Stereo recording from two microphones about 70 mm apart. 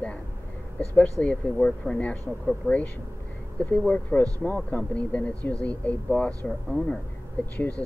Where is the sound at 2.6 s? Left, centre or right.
Left.